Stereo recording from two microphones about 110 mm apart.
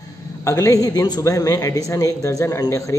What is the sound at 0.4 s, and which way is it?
A man's voice, 30° left (ahead or behind).